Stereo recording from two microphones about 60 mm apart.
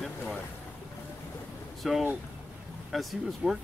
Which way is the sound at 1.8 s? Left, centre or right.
Centre.